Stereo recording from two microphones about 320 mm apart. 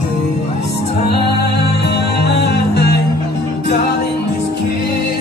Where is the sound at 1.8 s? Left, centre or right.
Left.